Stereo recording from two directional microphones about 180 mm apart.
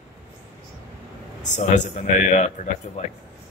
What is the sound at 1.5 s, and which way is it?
A man's voice, 45° left (ahead or behind).